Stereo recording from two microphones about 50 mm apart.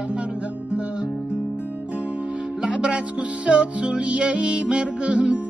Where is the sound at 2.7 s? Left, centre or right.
Right.